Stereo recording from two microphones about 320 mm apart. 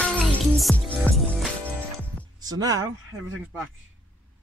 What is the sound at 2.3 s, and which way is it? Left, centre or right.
Speech, centre.